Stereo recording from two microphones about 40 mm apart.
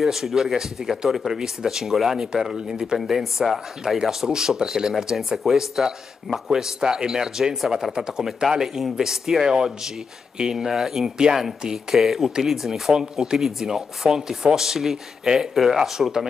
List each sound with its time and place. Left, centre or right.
0.0 s speech: centre
3.0 s speech: centre
5.4 s speech: centre
12.9 s speech: centre